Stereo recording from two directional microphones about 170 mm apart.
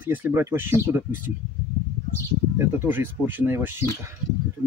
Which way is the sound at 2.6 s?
10° right (ahead or behind).